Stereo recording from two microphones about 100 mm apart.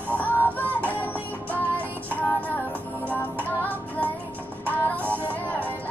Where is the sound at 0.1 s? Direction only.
15° left (ahead or behind).